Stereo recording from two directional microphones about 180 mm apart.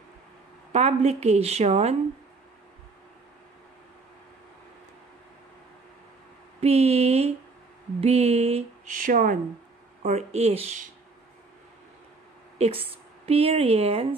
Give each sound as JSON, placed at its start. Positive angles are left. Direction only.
{"t": 0.7, "sound": "speech", "side_deg": -35}
{"t": 6.6, "sound": "speech", "side_deg": -35}
{"t": 10.0, "sound": "speech", "side_deg": -35}
{"t": 12.5, "sound": "a woman's voice", "side_deg": -35}